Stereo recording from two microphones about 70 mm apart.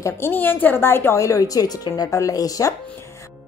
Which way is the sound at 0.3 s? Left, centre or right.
Left.